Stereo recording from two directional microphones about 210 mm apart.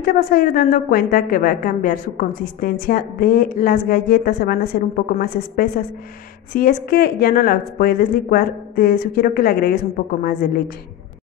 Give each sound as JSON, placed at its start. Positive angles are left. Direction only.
{"t": 0.0, "sound": "a woman's voice", "side_deg": 45}